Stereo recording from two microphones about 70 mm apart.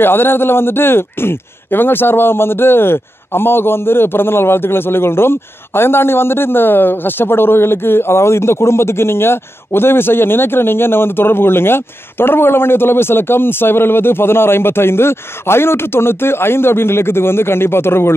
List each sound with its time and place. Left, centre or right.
0.0 s a man's voice: left